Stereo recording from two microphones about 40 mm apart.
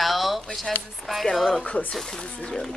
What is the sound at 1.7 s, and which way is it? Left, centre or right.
Speech, left.